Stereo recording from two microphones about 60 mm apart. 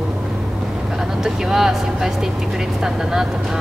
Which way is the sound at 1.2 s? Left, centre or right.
Centre.